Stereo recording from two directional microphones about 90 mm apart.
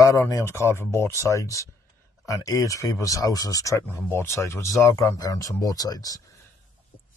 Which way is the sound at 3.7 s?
30° left (ahead or behind).